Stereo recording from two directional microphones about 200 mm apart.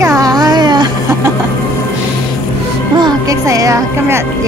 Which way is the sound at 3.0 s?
20° right (ahead or behind).